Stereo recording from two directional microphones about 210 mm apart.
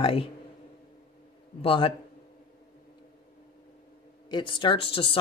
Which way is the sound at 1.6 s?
25° left (ahead or behind).